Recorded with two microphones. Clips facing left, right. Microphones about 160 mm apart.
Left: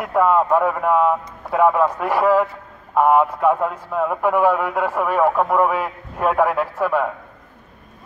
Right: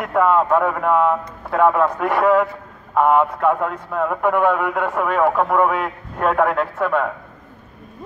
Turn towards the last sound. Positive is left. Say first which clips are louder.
# even
turn(degrees=5)  # may be behind; listen again after turning